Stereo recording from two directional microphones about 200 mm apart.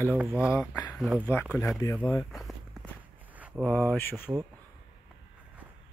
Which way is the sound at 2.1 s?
Centre (ahead or behind).